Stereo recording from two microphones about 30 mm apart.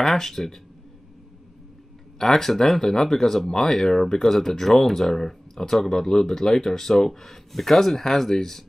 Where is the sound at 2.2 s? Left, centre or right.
Centre.